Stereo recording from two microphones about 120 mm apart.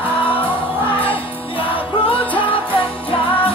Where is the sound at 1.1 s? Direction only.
45° left (ahead or behind).